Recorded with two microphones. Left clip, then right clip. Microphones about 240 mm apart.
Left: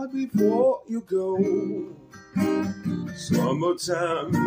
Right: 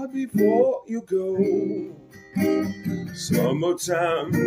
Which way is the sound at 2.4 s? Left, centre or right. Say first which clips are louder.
Right 2 dB; centre.